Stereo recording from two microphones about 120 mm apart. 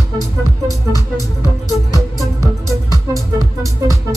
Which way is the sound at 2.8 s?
30° left (ahead or behind).